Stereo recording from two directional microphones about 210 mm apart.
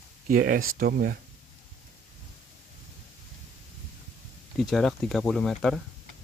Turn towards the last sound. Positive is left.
turn(degrees=0)  # may be behind; listen again after turning